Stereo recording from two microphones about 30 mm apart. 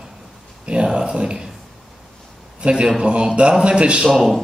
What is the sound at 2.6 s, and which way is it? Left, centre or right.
Speech, right.